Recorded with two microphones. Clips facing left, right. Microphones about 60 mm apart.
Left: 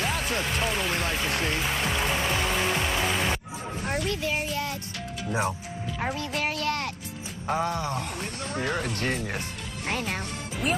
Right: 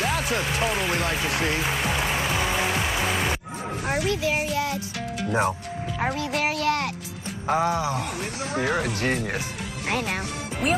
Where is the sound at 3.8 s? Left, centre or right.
Right.